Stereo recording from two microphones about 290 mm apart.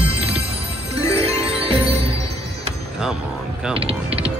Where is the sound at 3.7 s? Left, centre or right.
Centre.